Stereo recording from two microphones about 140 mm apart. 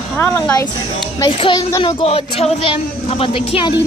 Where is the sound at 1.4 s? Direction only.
30° left (ahead or behind).